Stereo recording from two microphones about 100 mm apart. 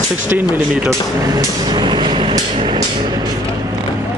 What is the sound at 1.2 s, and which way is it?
Vehicle, 40° right (ahead or behind).